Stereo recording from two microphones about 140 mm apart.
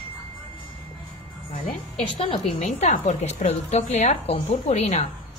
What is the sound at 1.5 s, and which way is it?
A woman's voice, 55° left (ahead or behind).